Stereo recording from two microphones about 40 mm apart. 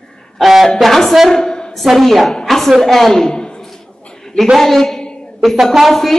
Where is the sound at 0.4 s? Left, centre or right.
Centre.